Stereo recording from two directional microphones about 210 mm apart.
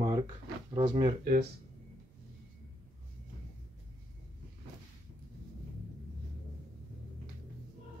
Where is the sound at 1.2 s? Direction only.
50° right (ahead or behind).